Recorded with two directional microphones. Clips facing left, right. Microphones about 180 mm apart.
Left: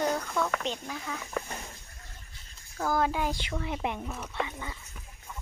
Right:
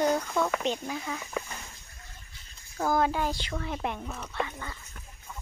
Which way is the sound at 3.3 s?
20° left (ahead or behind).